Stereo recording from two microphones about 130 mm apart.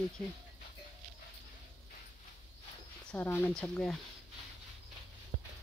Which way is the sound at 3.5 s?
5° left (ahead or behind).